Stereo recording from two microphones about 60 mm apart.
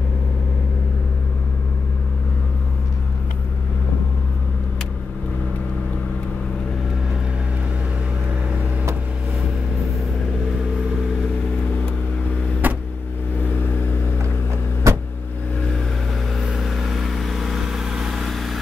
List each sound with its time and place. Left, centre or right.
12.6 s vehicle: right
14.8 s vehicle: right
16.3 s vehicle: centre